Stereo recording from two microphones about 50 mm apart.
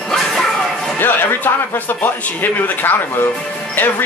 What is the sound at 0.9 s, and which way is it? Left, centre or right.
A man's voice, left.